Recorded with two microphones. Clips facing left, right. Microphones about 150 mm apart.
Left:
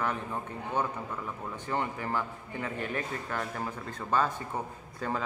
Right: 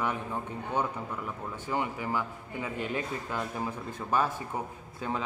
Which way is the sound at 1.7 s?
10° right (ahead or behind).